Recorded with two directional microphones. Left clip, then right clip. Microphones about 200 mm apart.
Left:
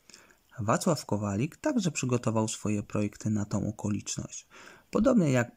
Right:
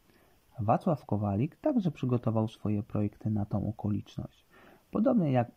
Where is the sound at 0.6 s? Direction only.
Centre (ahead or behind).